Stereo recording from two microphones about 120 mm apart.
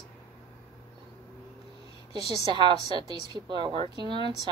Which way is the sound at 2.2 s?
35° right (ahead or behind).